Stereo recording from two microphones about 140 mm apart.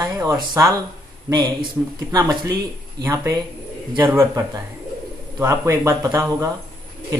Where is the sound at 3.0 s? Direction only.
20° right (ahead or behind).